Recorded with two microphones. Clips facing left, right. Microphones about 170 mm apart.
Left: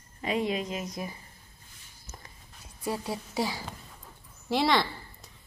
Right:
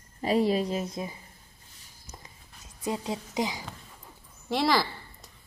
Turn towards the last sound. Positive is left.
turn(degrees=0)  # may be behind; listen again after turning